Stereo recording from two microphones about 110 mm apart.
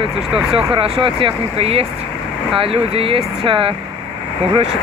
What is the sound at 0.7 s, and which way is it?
Speech, 60° right (ahead or behind).